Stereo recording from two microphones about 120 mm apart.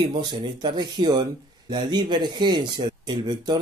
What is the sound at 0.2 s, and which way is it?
Speech, 35° right (ahead or behind).